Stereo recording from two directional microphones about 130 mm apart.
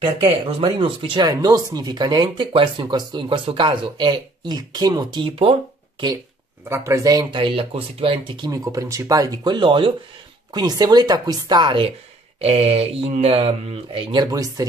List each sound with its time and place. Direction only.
0.0 s speech: 45° right (ahead or behind)
6.7 s speech: 20° right (ahead or behind)
7.3 s speech: 40° right (ahead or behind)
8.6 s speech: 25° right (ahead or behind)
12.4 s speech: 50° right (ahead or behind)
14.1 s speech: 30° right (ahead or behind)